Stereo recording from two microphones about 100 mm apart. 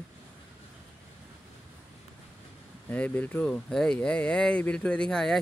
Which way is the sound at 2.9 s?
15° left (ahead or behind).